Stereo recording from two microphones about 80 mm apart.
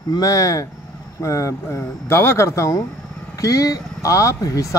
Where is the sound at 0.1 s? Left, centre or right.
Left.